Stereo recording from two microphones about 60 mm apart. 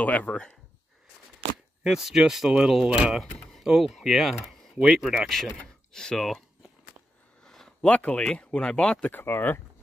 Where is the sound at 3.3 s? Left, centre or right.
Centre.